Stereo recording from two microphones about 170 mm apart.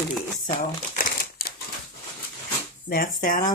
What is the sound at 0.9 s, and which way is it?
Crumpling, 60° left (ahead or behind).